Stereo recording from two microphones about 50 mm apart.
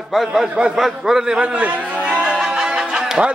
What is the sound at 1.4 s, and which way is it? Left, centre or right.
Speech, right.